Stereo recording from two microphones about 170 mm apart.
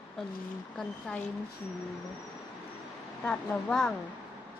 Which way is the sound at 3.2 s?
5° left (ahead or behind).